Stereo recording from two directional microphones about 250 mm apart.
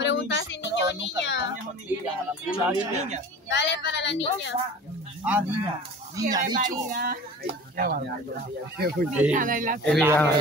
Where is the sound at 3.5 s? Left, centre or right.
Left.